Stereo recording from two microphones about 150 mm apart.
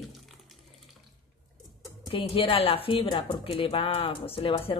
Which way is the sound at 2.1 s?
35° left (ahead or behind).